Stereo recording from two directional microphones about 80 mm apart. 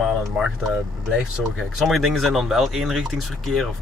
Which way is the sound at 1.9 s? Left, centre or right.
Centre.